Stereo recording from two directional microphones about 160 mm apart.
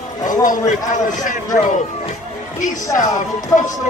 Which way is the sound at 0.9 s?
50° left (ahead or behind).